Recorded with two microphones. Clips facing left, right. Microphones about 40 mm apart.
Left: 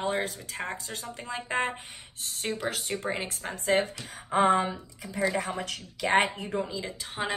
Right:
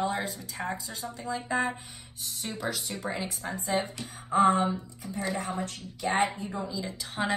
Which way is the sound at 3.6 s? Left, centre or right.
Left.